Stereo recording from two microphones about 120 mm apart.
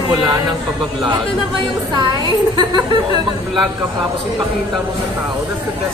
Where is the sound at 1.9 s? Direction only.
40° right (ahead or behind).